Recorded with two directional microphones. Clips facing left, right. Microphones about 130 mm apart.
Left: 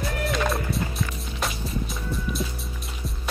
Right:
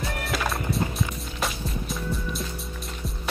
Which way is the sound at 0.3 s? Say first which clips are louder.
Left 1 dB; centre (ahead or behind).